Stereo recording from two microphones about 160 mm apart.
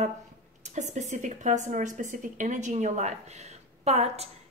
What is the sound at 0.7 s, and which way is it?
A woman's voice, 45° right (ahead or behind).